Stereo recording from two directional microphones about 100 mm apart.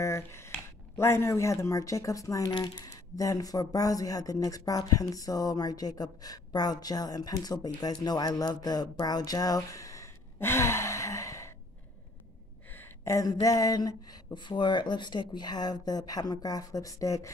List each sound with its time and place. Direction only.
0.0 s a sound: 25° left (ahead or behind)
0.9 s speech: 25° left (ahead or behind)
2.5 s speech: 45° left (ahead or behind); by 11.5 s 30° left (ahead or behind)
12.6 s speech: 20° left (ahead or behind)